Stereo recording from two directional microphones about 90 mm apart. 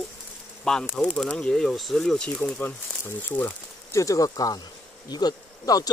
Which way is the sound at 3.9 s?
40° left (ahead or behind).